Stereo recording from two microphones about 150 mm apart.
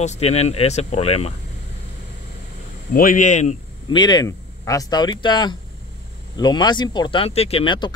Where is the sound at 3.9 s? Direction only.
30° left (ahead or behind).